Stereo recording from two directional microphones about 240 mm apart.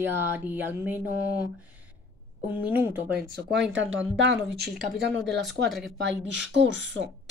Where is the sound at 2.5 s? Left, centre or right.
Centre.